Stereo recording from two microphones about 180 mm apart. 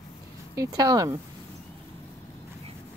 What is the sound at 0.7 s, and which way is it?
Speech, 20° right (ahead or behind).